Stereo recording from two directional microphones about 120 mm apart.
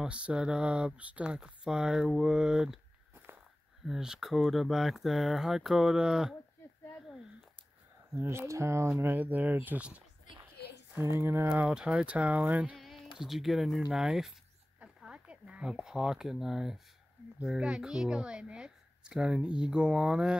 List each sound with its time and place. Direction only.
0.0 s speech: 10° right (ahead or behind)
3.8 s speech: 5° right (ahead or behind)
8.1 s speech: 20° right (ahead or behind)
12.7 s a sound: centre (ahead or behind)
13.2 s speech: centre (ahead or behind)